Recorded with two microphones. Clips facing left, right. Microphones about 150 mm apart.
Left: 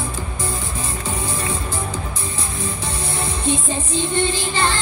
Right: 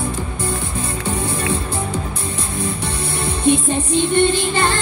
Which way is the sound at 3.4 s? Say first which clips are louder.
Right 8 dB; 60° right (ahead or behind).